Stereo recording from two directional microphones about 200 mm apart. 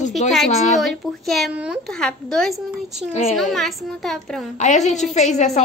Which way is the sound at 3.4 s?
Centre (ahead or behind).